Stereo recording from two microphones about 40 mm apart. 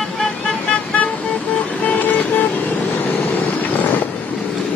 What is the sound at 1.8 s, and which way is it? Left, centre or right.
Music, left.